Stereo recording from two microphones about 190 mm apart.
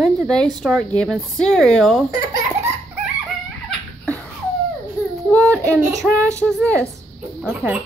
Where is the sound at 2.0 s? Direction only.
20° right (ahead or behind).